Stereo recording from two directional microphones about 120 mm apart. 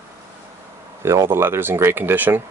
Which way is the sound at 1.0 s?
20° right (ahead or behind).